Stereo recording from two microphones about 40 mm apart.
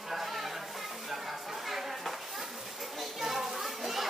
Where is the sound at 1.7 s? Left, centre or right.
Centre.